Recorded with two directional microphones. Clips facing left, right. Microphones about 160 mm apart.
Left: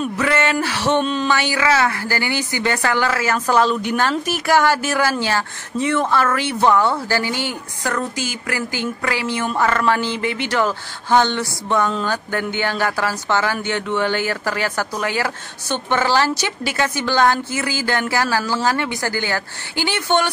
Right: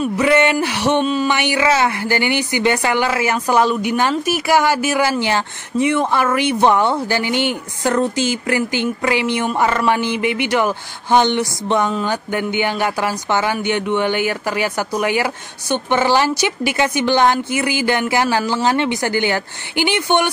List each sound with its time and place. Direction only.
0.2 s a sound: 15° right (ahead or behind)
1.0 s speech: 5° right (ahead or behind)
1.3 s a woman's voice: 20° right (ahead or behind)